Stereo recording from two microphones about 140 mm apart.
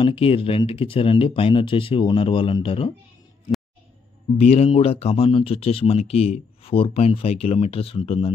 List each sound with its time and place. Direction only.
0.0 s speech: 40° left (ahead or behind)
4.4 s speech: 50° left (ahead or behind)